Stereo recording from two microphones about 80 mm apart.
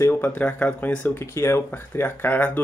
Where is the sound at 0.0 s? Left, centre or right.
Left.